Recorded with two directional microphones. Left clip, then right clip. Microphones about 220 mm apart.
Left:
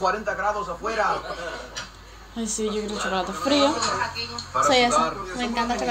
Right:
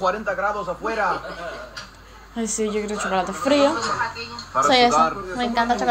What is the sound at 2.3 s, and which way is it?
A woman's voice, 15° right (ahead or behind).